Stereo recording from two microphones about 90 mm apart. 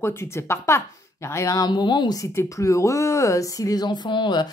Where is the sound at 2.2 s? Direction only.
35° left (ahead or behind).